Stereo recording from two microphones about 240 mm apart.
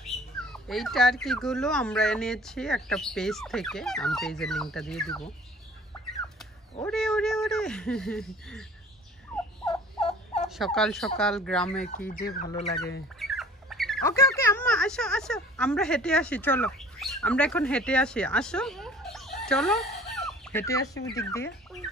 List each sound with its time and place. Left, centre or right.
0.0 s speech: centre
6.8 s speech: centre
9.7 s turkey: left
10.5 s speech: centre
12.1 s speech: left
13.2 s rodents: centre
14.0 s speech: centre
20.0 s chicken: centre